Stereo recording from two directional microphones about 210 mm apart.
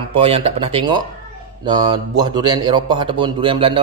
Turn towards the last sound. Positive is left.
turn(degrees=-25)  # may be behind; listen again after turning